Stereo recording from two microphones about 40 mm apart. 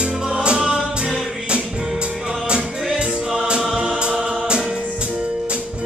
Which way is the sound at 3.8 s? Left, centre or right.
Right.